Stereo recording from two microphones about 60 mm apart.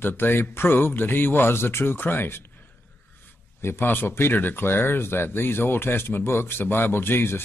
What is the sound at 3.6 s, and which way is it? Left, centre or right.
Speech, left.